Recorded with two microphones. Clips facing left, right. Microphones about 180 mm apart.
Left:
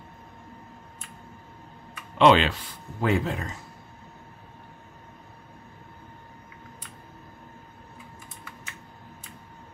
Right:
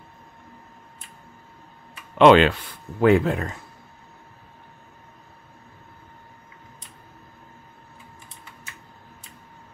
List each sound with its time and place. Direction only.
2.1 s speech: 55° right (ahead or behind)